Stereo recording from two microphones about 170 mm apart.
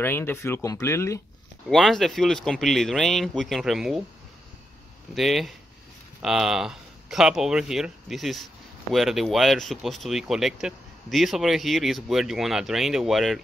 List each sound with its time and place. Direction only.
0.0 s speech: 15° left (ahead or behind)
1.7 s speech: centre (ahead or behind)
5.1 s speech: centre (ahead or behind)